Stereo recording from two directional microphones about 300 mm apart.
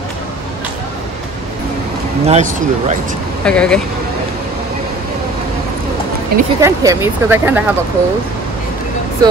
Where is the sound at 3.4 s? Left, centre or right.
Centre.